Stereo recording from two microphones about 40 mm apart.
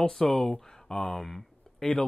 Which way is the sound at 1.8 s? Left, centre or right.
Left.